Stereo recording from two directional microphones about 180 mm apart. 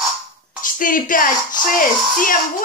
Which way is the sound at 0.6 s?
50° left (ahead or behind).